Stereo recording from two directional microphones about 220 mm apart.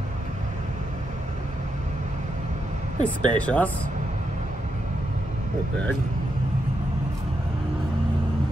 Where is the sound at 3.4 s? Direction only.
5° left (ahead or behind).